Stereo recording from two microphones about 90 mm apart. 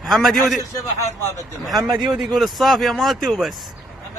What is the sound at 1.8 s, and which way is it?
Speech, 55° right (ahead or behind).